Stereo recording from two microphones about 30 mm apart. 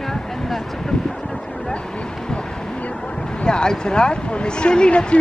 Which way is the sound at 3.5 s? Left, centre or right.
Left.